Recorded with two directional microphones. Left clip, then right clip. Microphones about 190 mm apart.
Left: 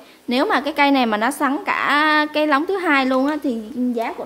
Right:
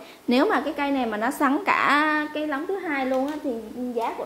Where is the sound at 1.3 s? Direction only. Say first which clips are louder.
Left 2 dB; 5° left (ahead or behind); by 2.6 s 25° left (ahead or behind).